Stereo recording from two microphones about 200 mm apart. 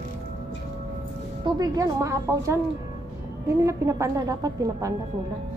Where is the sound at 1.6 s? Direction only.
15° right (ahead or behind).